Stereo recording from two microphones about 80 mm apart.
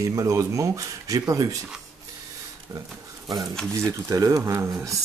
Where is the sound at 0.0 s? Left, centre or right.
Right.